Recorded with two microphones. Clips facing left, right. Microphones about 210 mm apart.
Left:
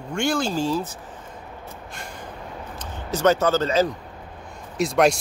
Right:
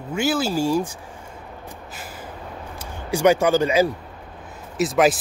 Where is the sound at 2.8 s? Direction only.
10° right (ahead or behind).